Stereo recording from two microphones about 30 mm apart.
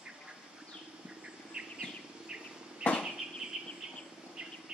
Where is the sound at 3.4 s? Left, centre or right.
Right.